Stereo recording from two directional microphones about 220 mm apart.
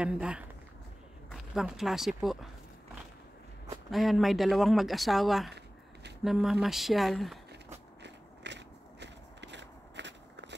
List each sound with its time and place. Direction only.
0.0 s speech: 5° right (ahead or behind)
3.9 s speech: centre (ahead or behind)
8.0 s walk: 50° right (ahead or behind)